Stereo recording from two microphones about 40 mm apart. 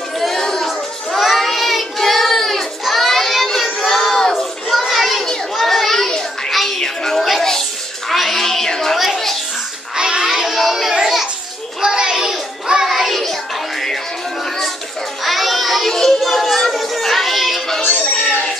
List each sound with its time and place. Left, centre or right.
0.3 s a sound: centre
0.7 s child singing: centre
5.6 s children playing: centre
6.8 s music: centre
8.1 s a sound: centre
8.9 s music: centre
9.9 s child singing: right
10.2 s child singing: centre
11.8 s child singing: centre
15.2 s a sound: centre
15.9 s children playing: centre
17.9 s a sound: centre